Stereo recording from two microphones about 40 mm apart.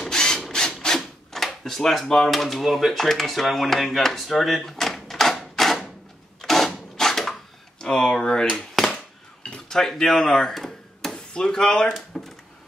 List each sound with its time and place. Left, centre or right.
0.1 s rub: centre
0.8 s a sound: centre
2.1 s speech: centre
5.4 s a sound: centre
6.4 s wood: centre
7.8 s speech: centre
9.7 s speech: centre
10.5 s tick-tock: centre
11.3 s speech: centre
12.1 s a sound: centre